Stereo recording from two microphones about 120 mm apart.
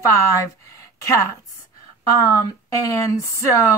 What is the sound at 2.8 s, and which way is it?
Speech, 25° left (ahead or behind).